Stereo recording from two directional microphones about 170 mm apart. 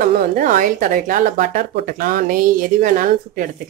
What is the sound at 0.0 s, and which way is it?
A woman's voice, 50° right (ahead or behind).